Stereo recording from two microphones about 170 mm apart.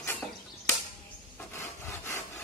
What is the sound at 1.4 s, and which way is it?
Wood, 15° left (ahead or behind).